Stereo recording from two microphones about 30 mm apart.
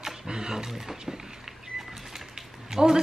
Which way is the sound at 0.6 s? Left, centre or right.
Centre.